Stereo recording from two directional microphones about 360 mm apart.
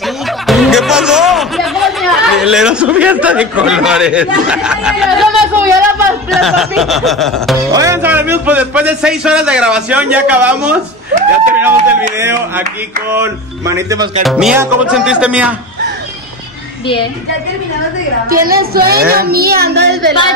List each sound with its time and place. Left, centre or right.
0.5 s a man's voice: centre
12.2 s a man's voice: centre
18.3 s a woman's voice: right